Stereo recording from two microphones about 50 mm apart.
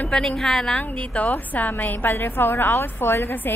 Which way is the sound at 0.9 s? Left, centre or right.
Left.